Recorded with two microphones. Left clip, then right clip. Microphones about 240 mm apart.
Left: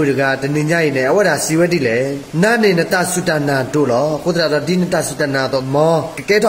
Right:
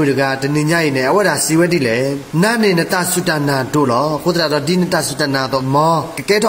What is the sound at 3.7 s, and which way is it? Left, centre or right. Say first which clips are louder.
Speech: right 1 dB; right.